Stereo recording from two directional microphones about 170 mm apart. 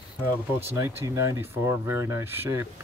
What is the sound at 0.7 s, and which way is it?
Speech, 15° right (ahead or behind).